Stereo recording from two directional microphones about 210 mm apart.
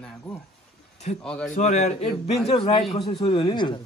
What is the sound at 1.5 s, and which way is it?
A man's voice, 35° left (ahead or behind).